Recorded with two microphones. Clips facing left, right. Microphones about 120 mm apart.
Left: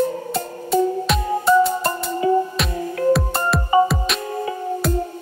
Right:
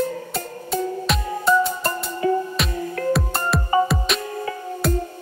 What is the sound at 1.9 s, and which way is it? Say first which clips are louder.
Music: left 2 dB; 25° left (ahead or behind).